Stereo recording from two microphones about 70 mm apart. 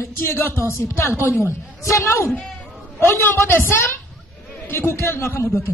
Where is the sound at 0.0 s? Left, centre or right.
Left.